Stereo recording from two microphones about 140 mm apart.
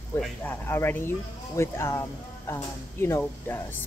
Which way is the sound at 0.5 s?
15° left (ahead or behind).